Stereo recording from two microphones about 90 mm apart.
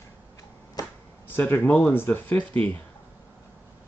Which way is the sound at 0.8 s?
45° left (ahead or behind).